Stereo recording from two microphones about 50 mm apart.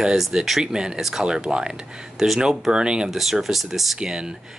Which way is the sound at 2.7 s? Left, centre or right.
Centre.